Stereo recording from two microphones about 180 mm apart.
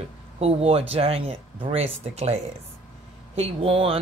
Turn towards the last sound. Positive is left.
turn(degrees=-30)  # may be behind; listen again after turning